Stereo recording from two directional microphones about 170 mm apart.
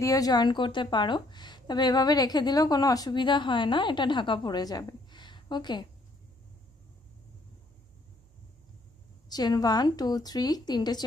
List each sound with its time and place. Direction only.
0.0 s a woman's voice: 20° left (ahead or behind)
9.3 s a woman's voice: 25° left (ahead or behind)